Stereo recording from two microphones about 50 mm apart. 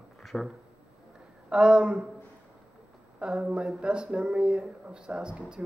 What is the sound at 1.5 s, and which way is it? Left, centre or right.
Speech, centre.